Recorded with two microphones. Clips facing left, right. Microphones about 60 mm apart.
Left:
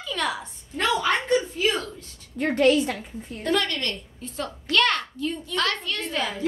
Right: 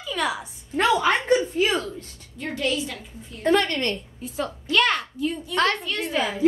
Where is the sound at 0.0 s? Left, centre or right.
Centre.